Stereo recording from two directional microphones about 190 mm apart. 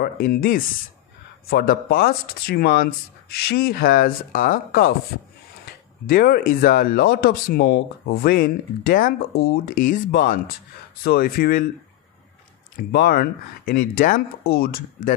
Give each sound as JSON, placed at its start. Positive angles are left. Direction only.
{"t": 0.0, "sound": "speech", "side_deg": 50}
{"t": 6.0, "sound": "speech", "side_deg": 50}
{"t": 12.7, "sound": "speech", "side_deg": 55}